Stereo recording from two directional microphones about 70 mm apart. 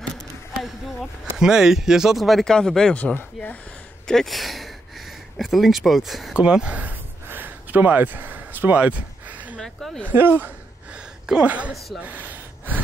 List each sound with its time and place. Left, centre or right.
0.0 s basketball bounce: centre
1.4 s speech: centre
4.1 s speech: centre
6.3 s a sound: centre
9.6 s a sound: centre
10.0 s speech: right
11.4 s a woman's voice: centre
12.0 s gasp: right